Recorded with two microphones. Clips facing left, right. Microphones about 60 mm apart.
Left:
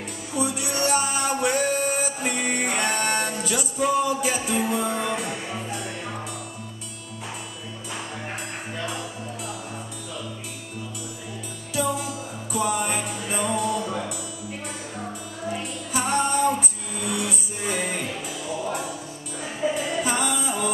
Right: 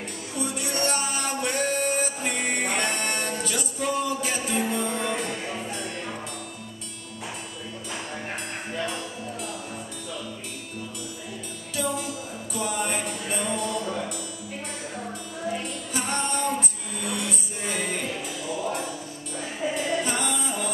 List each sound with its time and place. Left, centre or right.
0.4 s music: centre
11.7 s music: centre
15.5 s music: centre